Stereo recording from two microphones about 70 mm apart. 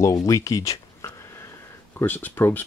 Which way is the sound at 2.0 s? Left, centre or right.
Left.